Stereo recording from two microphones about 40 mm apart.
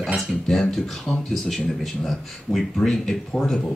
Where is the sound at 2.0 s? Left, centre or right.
Centre.